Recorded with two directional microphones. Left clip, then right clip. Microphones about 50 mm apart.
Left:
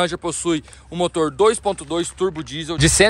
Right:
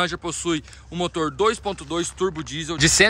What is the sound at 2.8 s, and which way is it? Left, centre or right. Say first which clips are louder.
Speech: left 1 dB; right.